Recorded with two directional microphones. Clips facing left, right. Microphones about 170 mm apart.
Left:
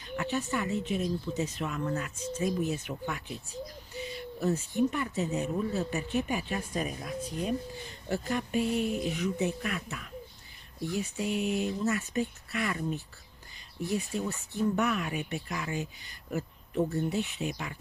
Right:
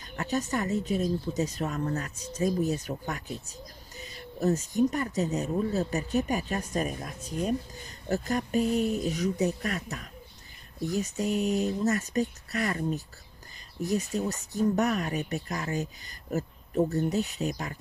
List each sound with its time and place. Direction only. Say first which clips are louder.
0.1 s speech: right 2 dB; 40° right (ahead or behind)